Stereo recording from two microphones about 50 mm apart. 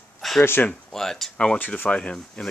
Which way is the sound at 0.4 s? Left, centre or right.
Left.